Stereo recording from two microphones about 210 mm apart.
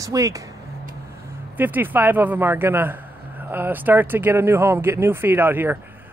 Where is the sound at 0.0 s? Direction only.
15° right (ahead or behind).